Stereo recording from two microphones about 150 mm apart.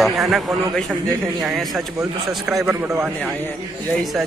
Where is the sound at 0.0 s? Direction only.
Centre (ahead or behind).